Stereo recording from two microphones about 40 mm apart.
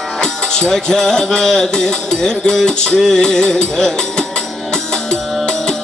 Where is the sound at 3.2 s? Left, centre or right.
Centre.